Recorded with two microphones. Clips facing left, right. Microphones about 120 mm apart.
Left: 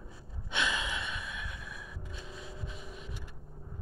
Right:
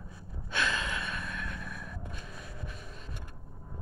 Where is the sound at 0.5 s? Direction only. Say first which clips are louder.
Right 1 dB; 15° left (ahead or behind).